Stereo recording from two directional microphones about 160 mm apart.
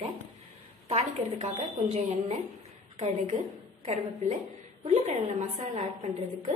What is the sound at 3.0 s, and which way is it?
A woman's voice, 50° right (ahead or behind).